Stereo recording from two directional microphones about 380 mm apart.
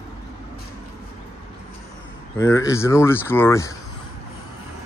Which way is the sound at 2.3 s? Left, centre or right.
Centre.